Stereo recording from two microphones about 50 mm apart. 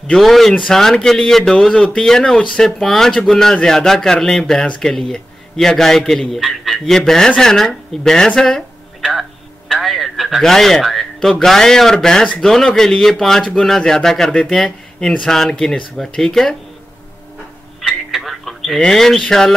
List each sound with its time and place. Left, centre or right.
0.2 s a man's voice: centre
4.9 s a man's voice: centre
6.9 s a man's voice: centre
9.7 s a sound: centre
10.4 s a man's voice: centre
17.7 s telephone: centre
18.9 s a man's voice: centre